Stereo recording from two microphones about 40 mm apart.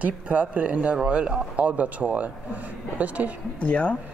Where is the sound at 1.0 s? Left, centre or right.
Right.